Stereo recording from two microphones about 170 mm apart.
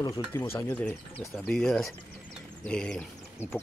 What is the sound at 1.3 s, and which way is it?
Speech, 5° left (ahead or behind).